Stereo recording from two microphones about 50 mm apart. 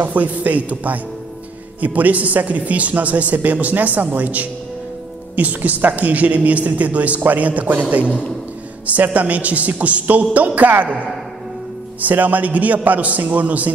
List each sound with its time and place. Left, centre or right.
0.0 s a man's voice: right
12.0 s speech: right